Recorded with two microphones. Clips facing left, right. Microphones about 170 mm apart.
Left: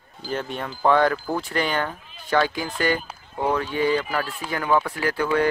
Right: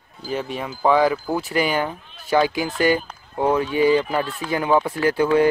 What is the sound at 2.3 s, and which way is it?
Speech, 10° right (ahead or behind).